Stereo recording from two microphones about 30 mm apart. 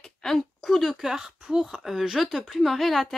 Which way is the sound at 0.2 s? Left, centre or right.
Centre.